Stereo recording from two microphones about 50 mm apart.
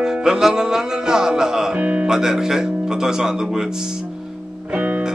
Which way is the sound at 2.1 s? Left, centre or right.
Centre.